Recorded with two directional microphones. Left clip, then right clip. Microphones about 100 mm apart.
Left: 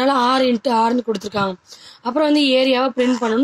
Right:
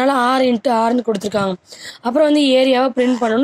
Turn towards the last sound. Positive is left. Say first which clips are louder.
# right 2 dB
turn(degrees=-40)  # may be behind; listen again after turning